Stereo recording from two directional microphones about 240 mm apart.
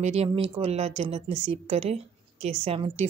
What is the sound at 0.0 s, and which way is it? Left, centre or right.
A woman's voice, right.